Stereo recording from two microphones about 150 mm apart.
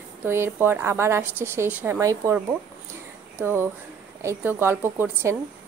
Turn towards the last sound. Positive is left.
turn(degrees=-15)  # may be behind; listen again after turning